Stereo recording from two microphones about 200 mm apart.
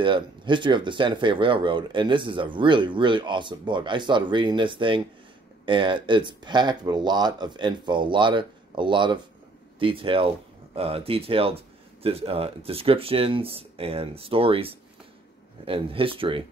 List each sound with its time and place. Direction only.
0.0 s speech: 25° right (ahead or behind)